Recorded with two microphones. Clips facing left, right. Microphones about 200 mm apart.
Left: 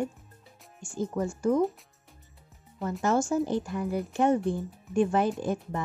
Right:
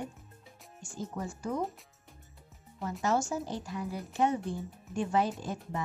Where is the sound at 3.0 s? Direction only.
50° left (ahead or behind).